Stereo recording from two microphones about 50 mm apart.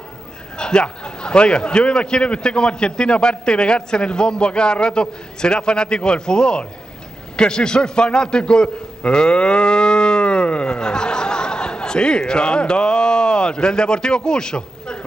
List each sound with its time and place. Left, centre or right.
0.6 s a man's voice: centre